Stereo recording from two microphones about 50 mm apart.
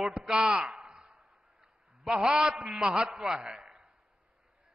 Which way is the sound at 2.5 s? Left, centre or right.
Centre.